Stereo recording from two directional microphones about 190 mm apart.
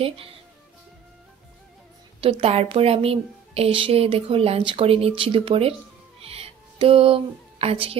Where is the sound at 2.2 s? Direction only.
30° right (ahead or behind).